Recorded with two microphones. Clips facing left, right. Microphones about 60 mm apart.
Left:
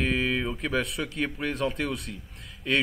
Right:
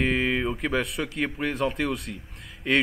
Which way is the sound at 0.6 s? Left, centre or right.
Centre.